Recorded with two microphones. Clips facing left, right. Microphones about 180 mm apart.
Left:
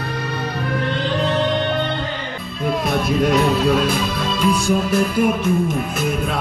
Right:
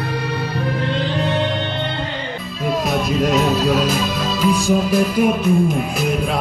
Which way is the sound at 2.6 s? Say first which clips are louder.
Even; centre (ahead or behind).